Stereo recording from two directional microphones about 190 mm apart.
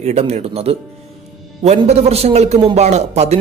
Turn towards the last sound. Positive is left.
turn(degrees=-35)  # may be behind; listen again after turning